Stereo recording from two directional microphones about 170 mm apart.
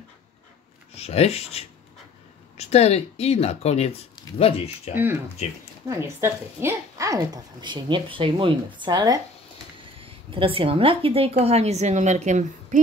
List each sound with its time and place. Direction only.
0.9 s speech: 35° left (ahead or behind)
4.9 s speech: 10° right (ahead or behind)
9.9 s speech: 35° right (ahead or behind)